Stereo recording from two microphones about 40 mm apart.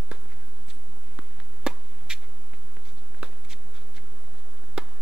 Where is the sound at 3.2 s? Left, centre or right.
Right.